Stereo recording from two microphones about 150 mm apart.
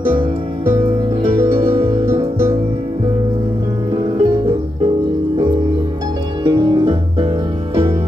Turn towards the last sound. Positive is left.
turn(degrees=-30)  # may be behind; listen again after turning